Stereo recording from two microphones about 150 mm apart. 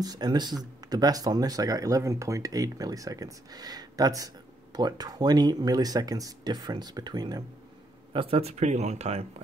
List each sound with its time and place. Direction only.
0.0 s speech: 25° right (ahead or behind)
8.1 s speech: 40° right (ahead or behind)